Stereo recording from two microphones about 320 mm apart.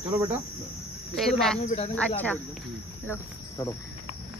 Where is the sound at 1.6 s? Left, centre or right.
Centre.